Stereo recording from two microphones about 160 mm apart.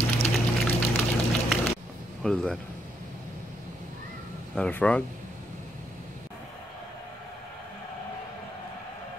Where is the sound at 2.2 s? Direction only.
5° left (ahead or behind).